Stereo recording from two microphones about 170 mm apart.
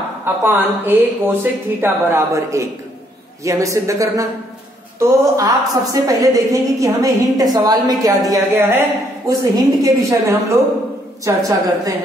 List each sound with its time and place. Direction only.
0.2 s a woman's voice: 10° right (ahead or behind)